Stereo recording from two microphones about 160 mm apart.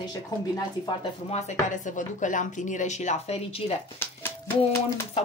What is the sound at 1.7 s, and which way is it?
A woman's voice, 50° left (ahead or behind).